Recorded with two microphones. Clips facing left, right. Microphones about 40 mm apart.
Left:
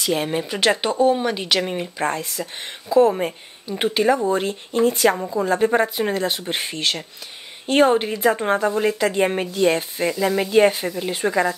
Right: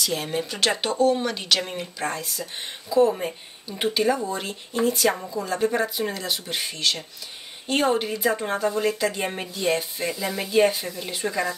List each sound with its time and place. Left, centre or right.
0.0 s a woman's voice: left
2.0 s a woman's voice: left